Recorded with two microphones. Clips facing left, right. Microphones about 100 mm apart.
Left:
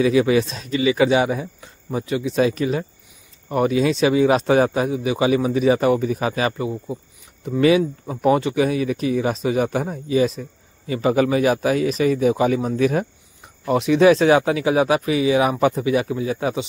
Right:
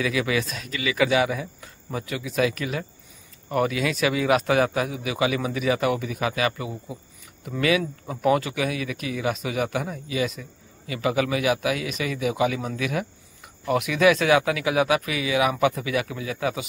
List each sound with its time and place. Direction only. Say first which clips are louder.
0.0 s speech: left 8 dB; 30° left (ahead or behind)